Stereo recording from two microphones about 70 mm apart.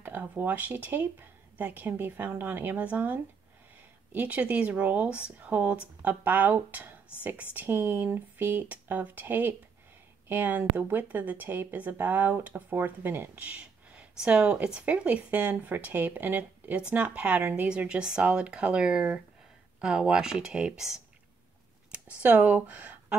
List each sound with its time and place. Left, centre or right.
0.0 s speech: right; by 21.0 s centre
21.9 s speech: right